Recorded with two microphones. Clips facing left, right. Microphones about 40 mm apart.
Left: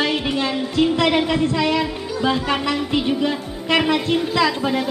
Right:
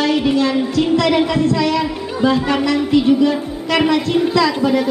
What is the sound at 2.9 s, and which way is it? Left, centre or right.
A woman's voice, left.